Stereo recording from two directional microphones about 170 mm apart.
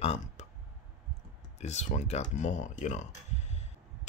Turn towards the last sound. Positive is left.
turn(degrees=40)  # may be behind; listen again after turning